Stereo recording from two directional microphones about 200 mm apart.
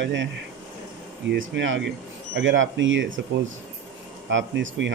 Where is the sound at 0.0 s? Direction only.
65° right (ahead or behind).